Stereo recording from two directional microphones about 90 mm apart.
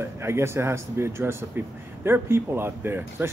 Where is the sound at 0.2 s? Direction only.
30° right (ahead or behind).